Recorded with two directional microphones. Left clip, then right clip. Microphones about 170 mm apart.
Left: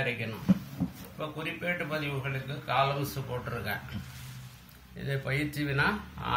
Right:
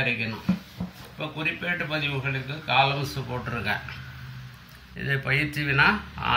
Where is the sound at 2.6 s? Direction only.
25° left (ahead or behind).